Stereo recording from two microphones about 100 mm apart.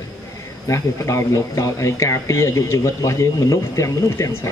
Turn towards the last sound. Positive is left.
turn(degrees=30)  # may be behind; listen again after turning